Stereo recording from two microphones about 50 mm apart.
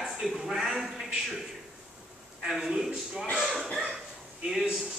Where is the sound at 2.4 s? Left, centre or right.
Centre.